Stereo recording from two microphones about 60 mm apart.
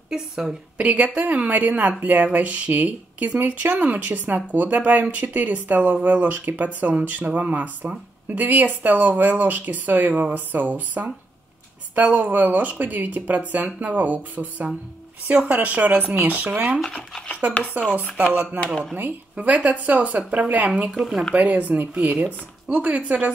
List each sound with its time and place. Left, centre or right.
0.1 s a woman's voice: centre
20.9 s speech: centre
21.4 s a woman's voice: right